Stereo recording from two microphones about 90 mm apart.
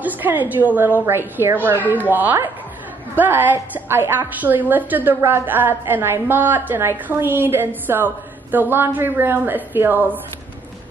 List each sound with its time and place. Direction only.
0.0 s a woman's voice: 20° right (ahead or behind)